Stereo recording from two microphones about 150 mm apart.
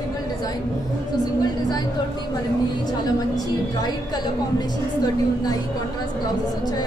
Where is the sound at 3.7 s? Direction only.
25° left (ahead or behind).